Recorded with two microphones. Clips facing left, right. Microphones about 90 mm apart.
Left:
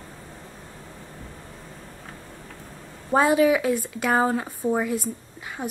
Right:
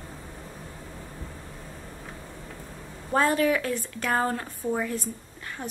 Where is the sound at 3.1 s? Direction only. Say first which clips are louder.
Left 4 dB; 10° left (ahead or behind).